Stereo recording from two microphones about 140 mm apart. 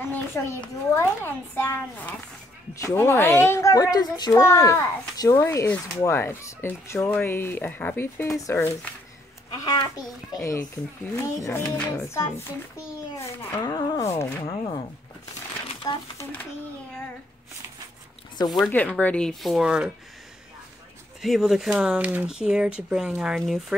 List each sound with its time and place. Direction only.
0.0 s a child's voice: 15° left (ahead or behind)
10.3 s a child's voice: 25° left (ahead or behind)
15.8 s a child's voice: 25° left (ahead or behind)
18.7 s speech: 10° left (ahead or behind); by 19.9 s 5° right (ahead or behind)
21.2 s speech: centre (ahead or behind)